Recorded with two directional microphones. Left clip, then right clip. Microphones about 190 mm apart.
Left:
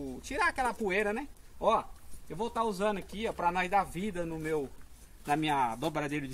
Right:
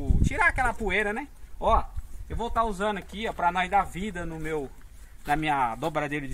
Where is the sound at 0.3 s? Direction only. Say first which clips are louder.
Right 6 dB; 10° right (ahead or behind).